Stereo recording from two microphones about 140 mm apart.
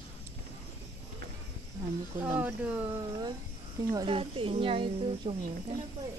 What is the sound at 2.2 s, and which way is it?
Speech, 10° right (ahead or behind).